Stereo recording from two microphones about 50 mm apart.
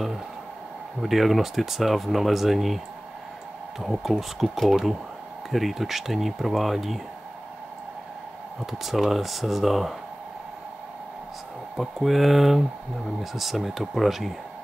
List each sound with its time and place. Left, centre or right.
1.0 s speech: centre
3.8 s speech: centre
8.8 s speech: centre
11.7 s speech: centre